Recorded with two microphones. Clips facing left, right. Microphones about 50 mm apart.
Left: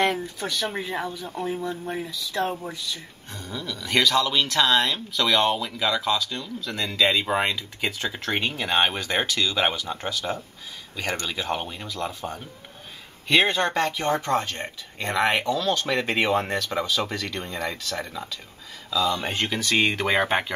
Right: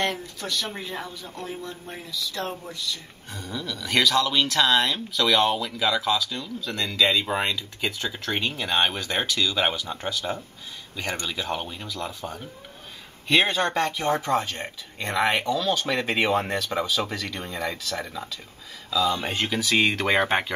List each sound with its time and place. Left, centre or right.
0.0 s speech: centre
3.3 s speech: centre
6.9 s speech: left; by 20.5 s centre